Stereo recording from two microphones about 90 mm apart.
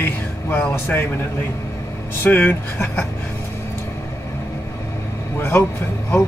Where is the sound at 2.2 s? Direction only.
25° left (ahead or behind).